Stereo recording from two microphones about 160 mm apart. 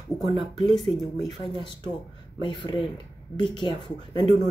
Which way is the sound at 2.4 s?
30° left (ahead or behind).